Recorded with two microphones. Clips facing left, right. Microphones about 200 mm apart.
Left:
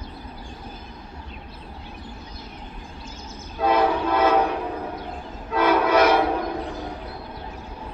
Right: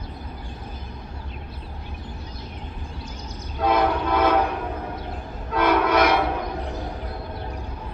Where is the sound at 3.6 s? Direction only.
5° left (ahead or behind).